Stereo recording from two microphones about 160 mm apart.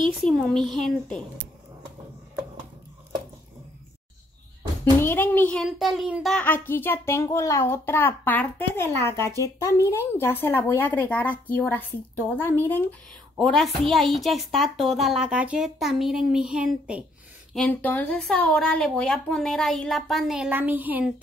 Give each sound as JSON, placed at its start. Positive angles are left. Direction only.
{"t": 0.2, "sound": "speech", "side_deg": 5}
{"t": 5.0, "sound": "a child's voice", "side_deg": 15}
{"t": 5.7, "sound": "speech", "side_deg": 0}
{"t": 6.3, "sound": "a child's voice", "side_deg": 10}
{"t": 17.6, "sound": "a child's voice", "side_deg": 10}